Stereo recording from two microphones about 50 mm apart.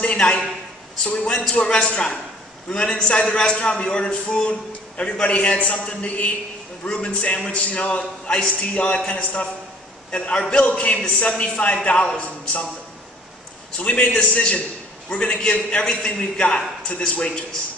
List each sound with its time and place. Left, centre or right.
0.0 s a man's voice: left
13.7 s a man's voice: left